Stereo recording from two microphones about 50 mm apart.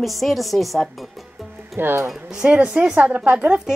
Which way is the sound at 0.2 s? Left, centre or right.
Centre.